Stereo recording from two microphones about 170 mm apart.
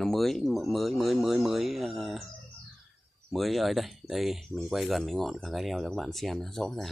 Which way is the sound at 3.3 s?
Centre (ahead or behind).